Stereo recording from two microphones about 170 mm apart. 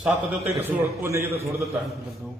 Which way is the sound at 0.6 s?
15° right (ahead or behind).